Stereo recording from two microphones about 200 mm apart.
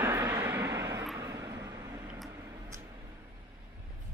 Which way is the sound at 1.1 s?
15° right (ahead or behind).